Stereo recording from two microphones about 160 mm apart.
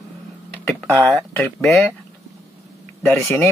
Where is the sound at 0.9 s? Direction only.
Centre (ahead or behind).